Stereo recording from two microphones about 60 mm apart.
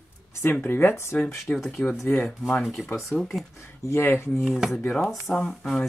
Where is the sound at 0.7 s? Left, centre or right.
Left.